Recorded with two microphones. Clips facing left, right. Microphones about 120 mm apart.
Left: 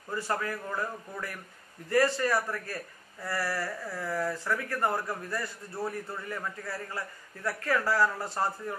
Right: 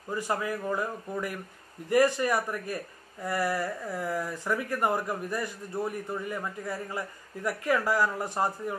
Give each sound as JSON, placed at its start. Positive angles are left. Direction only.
{"t": 0.1, "sound": "speech", "side_deg": -15}